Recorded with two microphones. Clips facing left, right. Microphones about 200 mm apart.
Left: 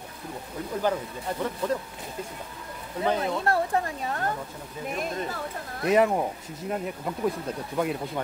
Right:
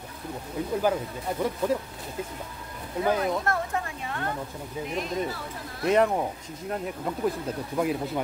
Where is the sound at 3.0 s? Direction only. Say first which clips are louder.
Even; 30° left (ahead or behind).